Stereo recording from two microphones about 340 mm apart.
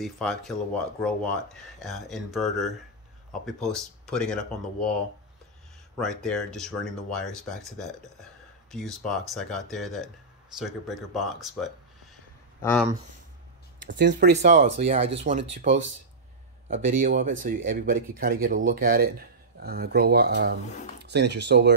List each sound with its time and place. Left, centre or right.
0.0 s speech: centre
5.9 s speech: centre
13.7 s speech: right
16.6 s speech: right